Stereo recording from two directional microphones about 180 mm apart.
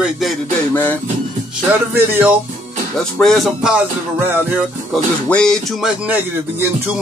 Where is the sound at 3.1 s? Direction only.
Centre (ahead or behind).